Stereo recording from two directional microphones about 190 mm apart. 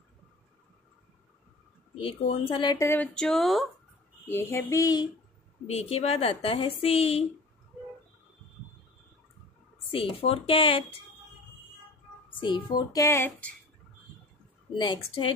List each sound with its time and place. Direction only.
2.0 s speech: 30° left (ahead or behind); by 3.6 s centre (ahead or behind)
4.3 s a sound: 15° left (ahead or behind)
5.7 s a woman's voice: 30° left (ahead or behind)
9.8 s speech: 30° left (ahead or behind)
12.3 s speech: 25° left (ahead or behind)